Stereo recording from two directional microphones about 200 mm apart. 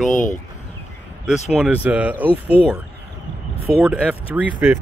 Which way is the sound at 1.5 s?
5° right (ahead or behind).